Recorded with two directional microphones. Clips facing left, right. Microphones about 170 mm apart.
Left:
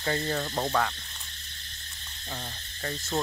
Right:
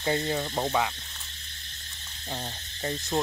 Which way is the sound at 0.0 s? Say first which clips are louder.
Right 2 dB; 15° right (ahead or behind).